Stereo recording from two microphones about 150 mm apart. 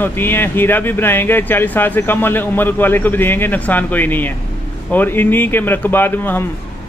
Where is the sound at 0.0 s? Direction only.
15° left (ahead or behind).